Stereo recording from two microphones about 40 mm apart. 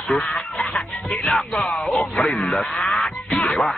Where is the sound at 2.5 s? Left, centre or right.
Centre.